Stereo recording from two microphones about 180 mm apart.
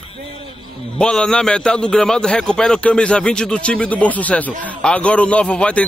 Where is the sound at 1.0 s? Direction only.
5° left (ahead or behind).